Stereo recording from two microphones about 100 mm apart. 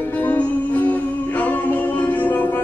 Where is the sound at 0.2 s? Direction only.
15° left (ahead or behind).